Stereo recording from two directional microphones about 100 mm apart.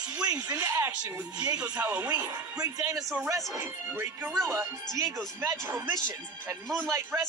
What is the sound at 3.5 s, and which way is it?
A man's voice, 25° right (ahead or behind).